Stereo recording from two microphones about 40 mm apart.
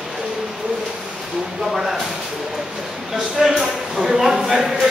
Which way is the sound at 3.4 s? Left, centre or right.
Centre.